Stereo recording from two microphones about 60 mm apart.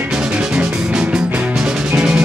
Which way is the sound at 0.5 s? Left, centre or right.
Centre.